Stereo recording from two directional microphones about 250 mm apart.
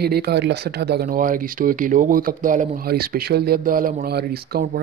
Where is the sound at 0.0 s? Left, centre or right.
Right.